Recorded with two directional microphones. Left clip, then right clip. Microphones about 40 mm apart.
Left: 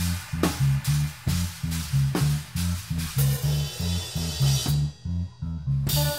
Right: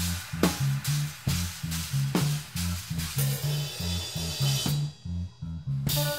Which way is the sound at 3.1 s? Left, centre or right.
Centre.